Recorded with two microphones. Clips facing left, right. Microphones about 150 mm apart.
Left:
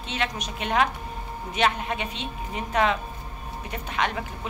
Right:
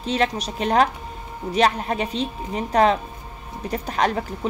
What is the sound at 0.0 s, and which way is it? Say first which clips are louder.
A woman's voice: right 7 dB; 35° right (ahead or behind).